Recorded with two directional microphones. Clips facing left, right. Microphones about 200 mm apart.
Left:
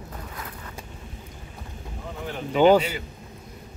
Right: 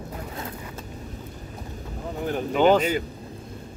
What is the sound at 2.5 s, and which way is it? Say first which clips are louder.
Speech: left 2 dB; 10° left (ahead or behind).